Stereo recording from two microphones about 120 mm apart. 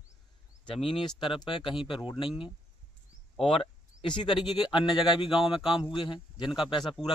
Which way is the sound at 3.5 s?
50° left (ahead or behind).